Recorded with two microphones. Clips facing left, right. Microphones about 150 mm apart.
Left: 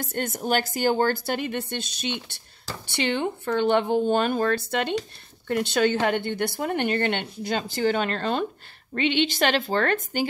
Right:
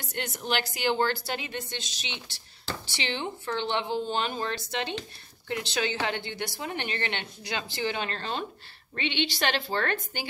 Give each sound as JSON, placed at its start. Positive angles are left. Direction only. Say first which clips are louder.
{"t": 0.0, "sound": "a woman's voice", "louder": "left 7 dB", "side_deg": 50}